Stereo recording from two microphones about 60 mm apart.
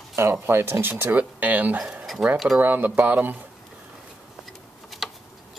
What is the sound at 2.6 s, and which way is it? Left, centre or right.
Speech, right.